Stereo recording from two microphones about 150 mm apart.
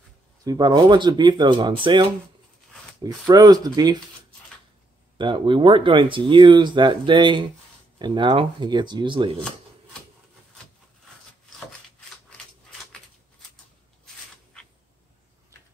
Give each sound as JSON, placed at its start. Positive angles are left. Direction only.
{"t": 0.4, "sound": "speech", "side_deg": -25}
{"t": 5.1, "sound": "speech", "side_deg": -35}
{"t": 14.0, "sound": "a sound", "side_deg": 5}